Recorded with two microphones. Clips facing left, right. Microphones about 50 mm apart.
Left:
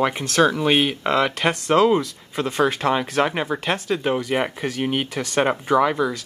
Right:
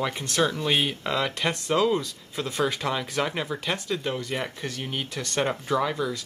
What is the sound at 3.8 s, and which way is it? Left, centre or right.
Speech, left.